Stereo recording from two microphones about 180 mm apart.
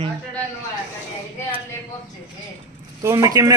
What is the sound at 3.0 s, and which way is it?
Speech, 15° right (ahead or behind).